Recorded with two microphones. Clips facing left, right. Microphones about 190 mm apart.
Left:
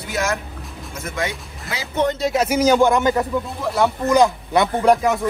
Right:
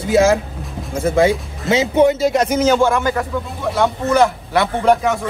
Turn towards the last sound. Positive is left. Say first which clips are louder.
# right 1 dB
turn(degrees=0)  # may be behind; listen again after turning